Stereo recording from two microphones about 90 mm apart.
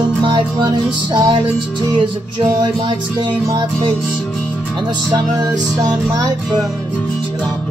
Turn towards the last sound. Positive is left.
turn(degrees=-45)  # may be behind; listen again after turning